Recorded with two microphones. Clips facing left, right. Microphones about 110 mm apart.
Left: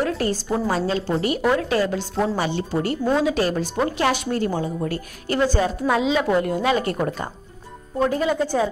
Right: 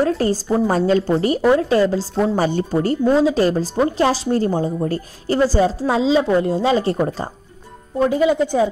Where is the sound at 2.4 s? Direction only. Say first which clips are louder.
Right 5 dB; 45° right (ahead or behind).